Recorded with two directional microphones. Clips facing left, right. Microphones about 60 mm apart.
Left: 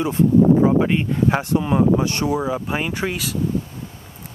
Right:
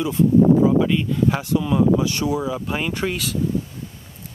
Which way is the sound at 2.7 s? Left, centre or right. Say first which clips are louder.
Even; centre.